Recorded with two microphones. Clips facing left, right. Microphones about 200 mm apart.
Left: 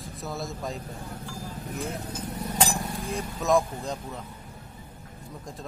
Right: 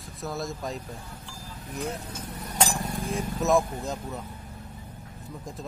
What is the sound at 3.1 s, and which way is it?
Speech, centre (ahead or behind).